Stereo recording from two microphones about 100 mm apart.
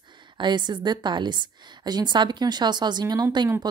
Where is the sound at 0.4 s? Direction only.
50° right (ahead or behind).